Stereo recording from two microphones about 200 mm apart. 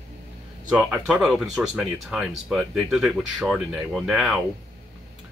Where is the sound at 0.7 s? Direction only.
5° right (ahead or behind).